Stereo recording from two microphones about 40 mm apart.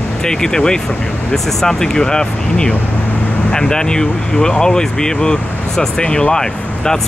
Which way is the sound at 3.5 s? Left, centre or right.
Centre.